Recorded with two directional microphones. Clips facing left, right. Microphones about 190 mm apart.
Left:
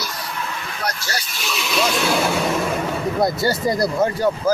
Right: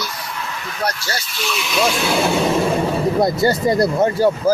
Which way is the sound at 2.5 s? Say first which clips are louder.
Right 4 dB; 30° right (ahead or behind).